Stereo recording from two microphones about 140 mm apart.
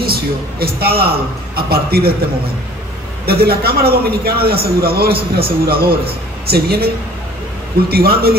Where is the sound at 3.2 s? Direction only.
90° right.